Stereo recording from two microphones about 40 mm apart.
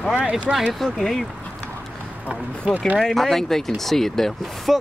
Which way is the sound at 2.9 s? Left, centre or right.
Centre.